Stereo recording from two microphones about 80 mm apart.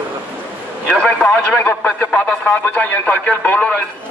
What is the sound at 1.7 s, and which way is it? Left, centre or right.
Speech, left.